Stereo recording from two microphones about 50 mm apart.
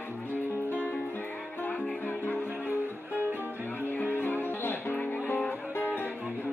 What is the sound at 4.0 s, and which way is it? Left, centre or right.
Music, left.